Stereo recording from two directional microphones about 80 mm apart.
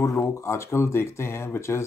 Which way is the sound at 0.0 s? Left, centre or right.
Left.